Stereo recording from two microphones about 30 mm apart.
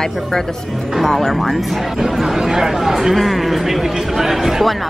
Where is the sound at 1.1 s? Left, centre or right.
Centre.